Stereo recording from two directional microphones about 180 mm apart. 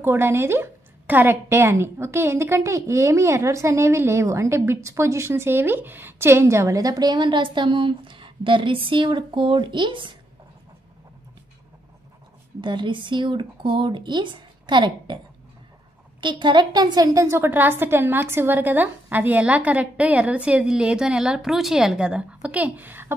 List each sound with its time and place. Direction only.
0.0 s a woman's voice: 10° right (ahead or behind)
12.5 s speech: 25° right (ahead or behind)
16.2 s a woman's voice: 25° right (ahead or behind)